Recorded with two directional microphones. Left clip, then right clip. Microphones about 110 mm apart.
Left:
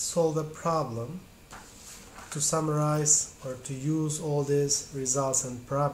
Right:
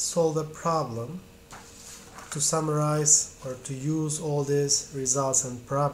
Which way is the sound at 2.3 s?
10° right (ahead or behind).